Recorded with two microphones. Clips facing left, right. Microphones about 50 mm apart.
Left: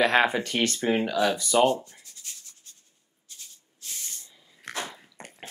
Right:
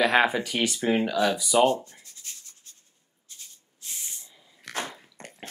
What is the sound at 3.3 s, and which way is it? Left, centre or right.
Rub, right.